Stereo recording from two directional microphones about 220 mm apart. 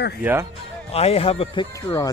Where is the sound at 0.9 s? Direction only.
25° left (ahead or behind).